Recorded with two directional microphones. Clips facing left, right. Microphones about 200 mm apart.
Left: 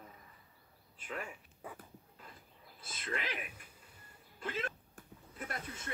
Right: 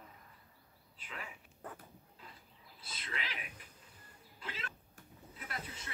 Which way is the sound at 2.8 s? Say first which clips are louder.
Left 5 dB; 50° left (ahead or behind).